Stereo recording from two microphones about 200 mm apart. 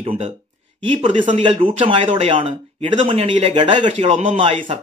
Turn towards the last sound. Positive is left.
turn(degrees=-35)  # may be behind; listen again after turning